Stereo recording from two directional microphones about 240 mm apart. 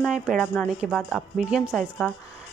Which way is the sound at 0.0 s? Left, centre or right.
Centre.